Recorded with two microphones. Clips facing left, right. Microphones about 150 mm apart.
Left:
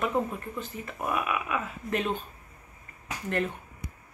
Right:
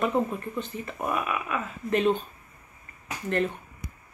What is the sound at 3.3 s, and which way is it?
Speech, 10° left (ahead or behind).